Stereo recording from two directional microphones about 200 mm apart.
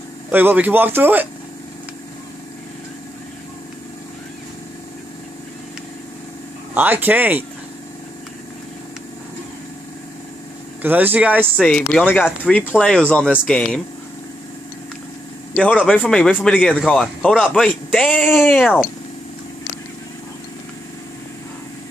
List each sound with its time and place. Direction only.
0.3 s speech: 10° right (ahead or behind)
6.7 s speech: 10° right (ahead or behind)
10.8 s speech: 10° right (ahead or behind)
11.5 s a man's voice: 5° left (ahead or behind)
12.9 s a man's voice: 5° left (ahead or behind)
15.5 s a man's voice: 5° left (ahead or behind)